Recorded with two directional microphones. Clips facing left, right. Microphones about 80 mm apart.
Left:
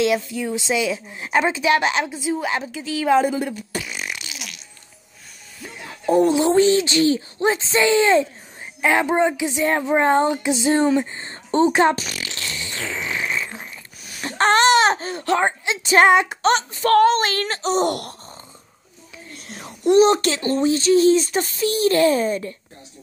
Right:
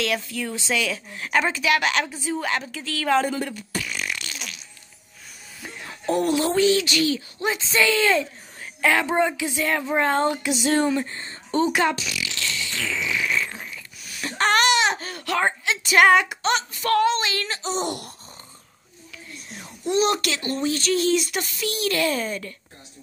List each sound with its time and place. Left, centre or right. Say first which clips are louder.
0.0 s speech: left 6 dB; centre
6.0 s speech: left 5 dB; left
12.0 s fart: even; left
15.0 s speech: left 5 dB; left
16.3 s speech: left 5 dB; left
17.6 s speech: left 7 dB; left
19.4 s whispering: left 9 dB; left
20.0 s speech: left 6 dB; left